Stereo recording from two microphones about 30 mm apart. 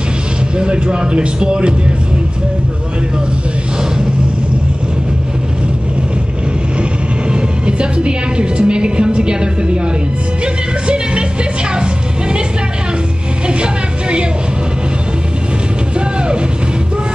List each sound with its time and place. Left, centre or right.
0.6 s speech: right
6.8 s speech: right
10.4 s music: right
11.7 s a sound: right